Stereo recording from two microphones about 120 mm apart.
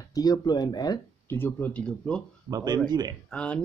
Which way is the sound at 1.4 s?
15° left (ahead or behind).